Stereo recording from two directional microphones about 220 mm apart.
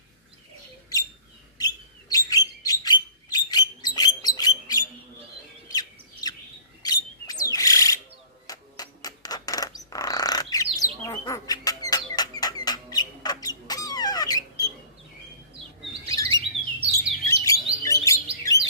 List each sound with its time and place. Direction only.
1.6 s bird: 15° left (ahead or behind)
6.8 s a sound: 15° left (ahead or behind)
16.1 s bird: 15° left (ahead or behind)
16.9 s chirp: 15° left (ahead or behind)